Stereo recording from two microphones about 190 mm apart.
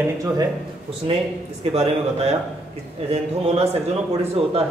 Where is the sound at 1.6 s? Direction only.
30° right (ahead or behind).